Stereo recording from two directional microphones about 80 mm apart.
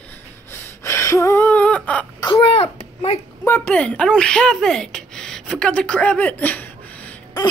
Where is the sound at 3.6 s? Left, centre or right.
Centre.